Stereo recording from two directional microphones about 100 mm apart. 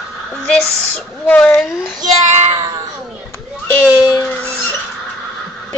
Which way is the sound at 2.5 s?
35° right (ahead or behind).